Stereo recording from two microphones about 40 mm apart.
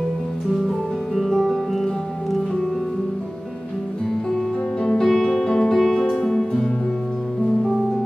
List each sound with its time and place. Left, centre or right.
0.7 s music: centre
4.8 s music: centre
5.8 s music: centre